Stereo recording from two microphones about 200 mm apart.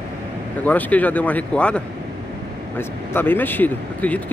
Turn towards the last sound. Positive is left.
turn(degrees=10)  # may be behind; listen again after turning